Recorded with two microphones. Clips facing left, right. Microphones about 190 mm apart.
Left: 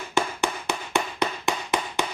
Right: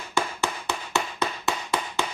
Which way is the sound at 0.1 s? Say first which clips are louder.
Left 2 dB; 15° left (ahead or behind).